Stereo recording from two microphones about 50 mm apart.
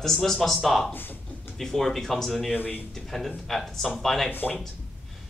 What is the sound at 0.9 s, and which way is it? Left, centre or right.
Speech, left.